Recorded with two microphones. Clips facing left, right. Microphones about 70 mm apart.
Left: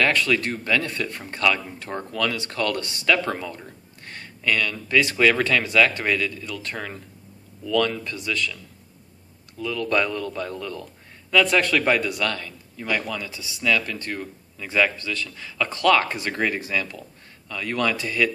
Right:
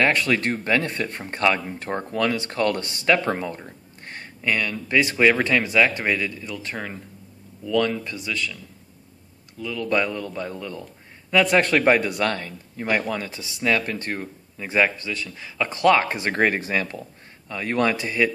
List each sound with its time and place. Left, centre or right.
0.0 s speech: right; by 8.5 s centre
9.6 s speech: centre; by 16.3 s right
16.3 s speech: right